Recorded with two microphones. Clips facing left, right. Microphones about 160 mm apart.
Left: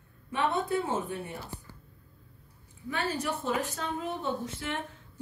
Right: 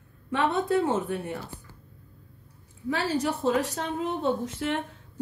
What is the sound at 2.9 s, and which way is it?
A woman's voice, 80° right.